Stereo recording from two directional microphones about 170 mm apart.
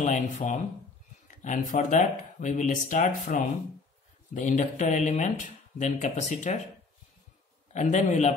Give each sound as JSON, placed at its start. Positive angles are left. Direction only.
{"t": 0.0, "sound": "speech", "side_deg": 45}
{"t": 7.7, "sound": "speech", "side_deg": 45}